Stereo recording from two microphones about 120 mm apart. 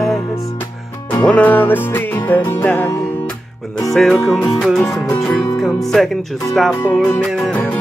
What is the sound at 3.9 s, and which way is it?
Speech, centre (ahead or behind).